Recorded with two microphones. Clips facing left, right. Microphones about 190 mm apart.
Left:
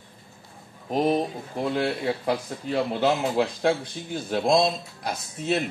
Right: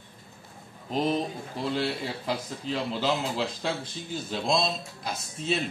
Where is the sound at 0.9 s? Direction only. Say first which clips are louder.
Left 4 dB; 55° left (ahead or behind).